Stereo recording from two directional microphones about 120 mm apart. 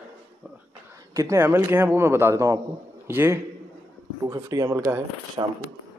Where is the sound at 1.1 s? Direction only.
25° right (ahead or behind).